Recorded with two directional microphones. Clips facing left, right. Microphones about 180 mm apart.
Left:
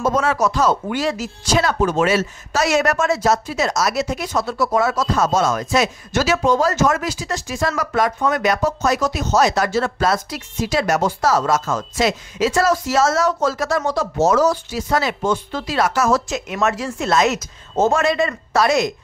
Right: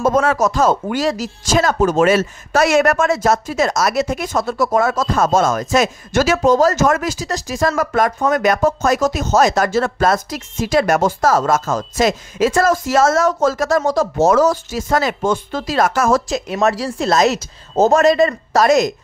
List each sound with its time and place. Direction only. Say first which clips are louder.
0.0 s speech: right 3 dB; 50° right (ahead or behind)
16.3 s a woman's voice: right 4 dB; 35° right (ahead or behind)